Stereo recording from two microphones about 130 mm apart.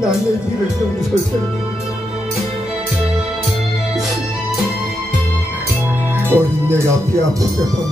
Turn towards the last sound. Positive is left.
turn(degrees=-20)  # may be behind; listen again after turning